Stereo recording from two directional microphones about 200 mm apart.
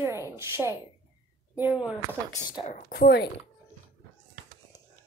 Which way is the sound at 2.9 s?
55° left (ahead or behind).